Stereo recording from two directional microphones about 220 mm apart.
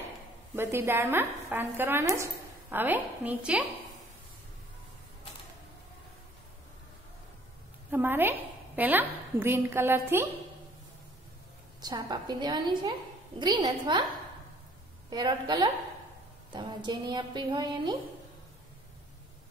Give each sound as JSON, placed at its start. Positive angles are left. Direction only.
{"t": 0.6, "sound": "speech", "side_deg": -10}
{"t": 7.9, "sound": "a woman's voice", "side_deg": -10}
{"t": 11.8, "sound": "a woman's voice", "side_deg": -20}
{"t": 15.0, "sound": "a woman's voice", "side_deg": -20}